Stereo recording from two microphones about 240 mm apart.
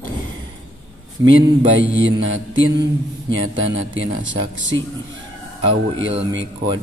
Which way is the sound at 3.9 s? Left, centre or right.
Right.